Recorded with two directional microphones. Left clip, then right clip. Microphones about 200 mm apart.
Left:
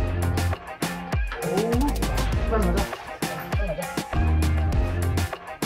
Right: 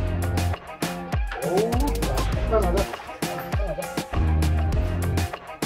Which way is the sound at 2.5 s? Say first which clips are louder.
Right 4 dB; 40° right (ahead or behind).